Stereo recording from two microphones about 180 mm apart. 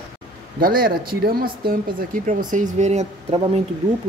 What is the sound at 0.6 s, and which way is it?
Speech, 55° right (ahead or behind).